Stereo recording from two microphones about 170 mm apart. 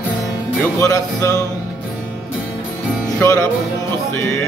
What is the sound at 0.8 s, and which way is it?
Music, 15° left (ahead or behind).